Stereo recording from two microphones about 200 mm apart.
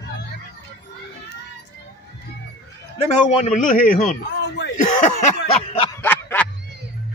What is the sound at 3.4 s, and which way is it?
Speech, 40° left (ahead or behind).